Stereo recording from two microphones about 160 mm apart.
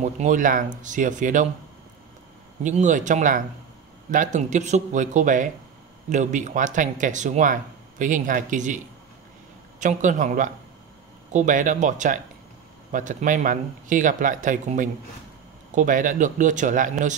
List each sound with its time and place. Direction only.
0.0 s speech: 50° right (ahead or behind)
2.6 s speech: 50° right (ahead or behind)